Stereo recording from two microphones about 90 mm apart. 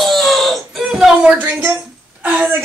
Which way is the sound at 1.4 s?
20° right (ahead or behind).